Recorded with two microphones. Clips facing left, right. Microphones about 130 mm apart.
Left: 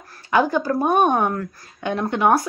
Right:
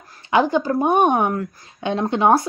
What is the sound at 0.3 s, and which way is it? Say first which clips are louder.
Speech: right 1 dB; 20° right (ahead or behind).